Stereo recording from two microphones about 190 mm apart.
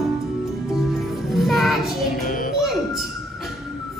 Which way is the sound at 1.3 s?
Centre (ahead or behind).